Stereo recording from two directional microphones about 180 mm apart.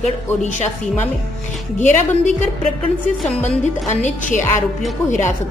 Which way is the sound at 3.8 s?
40° left (ahead or behind).